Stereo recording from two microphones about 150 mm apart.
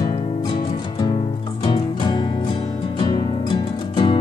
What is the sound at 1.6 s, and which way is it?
Music, 30° left (ahead or behind).